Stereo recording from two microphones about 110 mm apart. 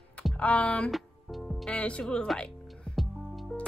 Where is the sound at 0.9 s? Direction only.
Centre (ahead or behind).